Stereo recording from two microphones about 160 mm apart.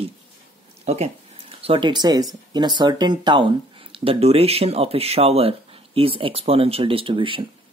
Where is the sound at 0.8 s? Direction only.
40° right (ahead or behind).